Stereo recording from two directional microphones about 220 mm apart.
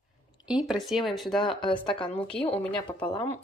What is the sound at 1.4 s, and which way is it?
Speech, 20° left (ahead or behind).